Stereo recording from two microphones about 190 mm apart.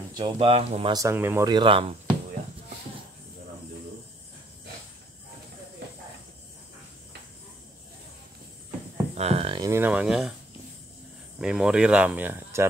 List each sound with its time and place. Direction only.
0.1 s speech: 25° right (ahead or behind)
0.9 s speech: 15° right (ahead or behind)
1.5 s speech: 25° right (ahead or behind)
9.1 s a sound: 35° right (ahead or behind)
9.6 s speech: 15° right (ahead or behind)
11.3 s speech: 5° right (ahead or behind)